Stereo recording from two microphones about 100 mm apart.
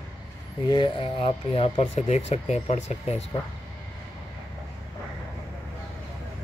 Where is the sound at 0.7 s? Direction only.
60° left (ahead or behind); by 3.1 s 90° left.